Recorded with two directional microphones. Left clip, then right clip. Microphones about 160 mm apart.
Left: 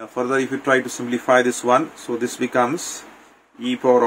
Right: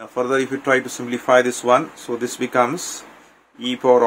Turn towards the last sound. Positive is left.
turn(degrees=-20)  # may be behind; listen again after turning